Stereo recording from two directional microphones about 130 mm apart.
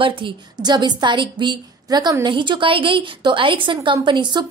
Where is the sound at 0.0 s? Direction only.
40° right (ahead or behind).